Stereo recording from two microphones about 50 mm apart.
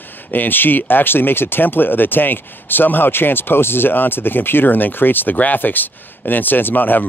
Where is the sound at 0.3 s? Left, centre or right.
Left.